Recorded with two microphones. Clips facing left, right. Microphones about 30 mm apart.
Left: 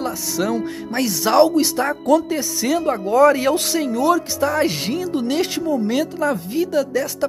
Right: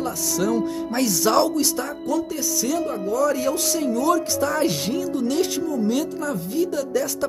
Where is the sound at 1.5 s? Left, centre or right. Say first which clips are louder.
Left 5 dB; left.